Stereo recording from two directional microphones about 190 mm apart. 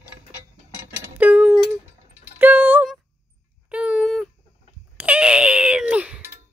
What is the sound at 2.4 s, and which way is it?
Music, 10° right (ahead or behind).